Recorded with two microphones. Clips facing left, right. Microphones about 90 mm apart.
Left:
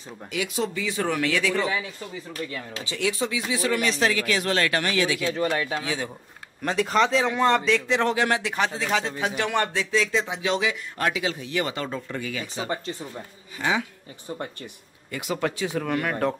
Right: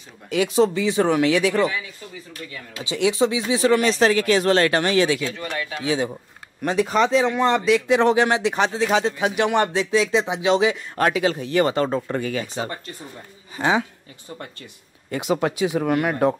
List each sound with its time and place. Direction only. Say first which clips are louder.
0.3 s speech: right 9 dB; 30° right (ahead or behind)
2.8 s speech: right 7 dB; 20° right (ahead or behind)
5.4 s speech: left 4 dB; 30° left (ahead or behind)
5.9 s speech: right 7 dB; 20° right (ahead or behind)
6.6 s speech: right 3 dB; 5° right (ahead or behind); by 10.8 s 25° right (ahead or behind)
11.0 s speech: right 7 dB; 45° right (ahead or behind)
15.0 s speech: right 5 dB; 25° right (ahead or behind)